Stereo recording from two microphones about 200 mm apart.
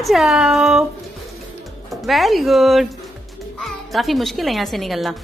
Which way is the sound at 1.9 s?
Centre (ahead or behind).